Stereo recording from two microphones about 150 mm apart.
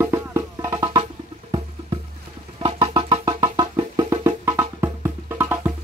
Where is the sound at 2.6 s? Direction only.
30° right (ahead or behind).